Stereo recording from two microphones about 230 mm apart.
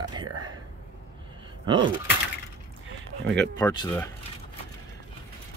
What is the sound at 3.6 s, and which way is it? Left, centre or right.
Speech, centre.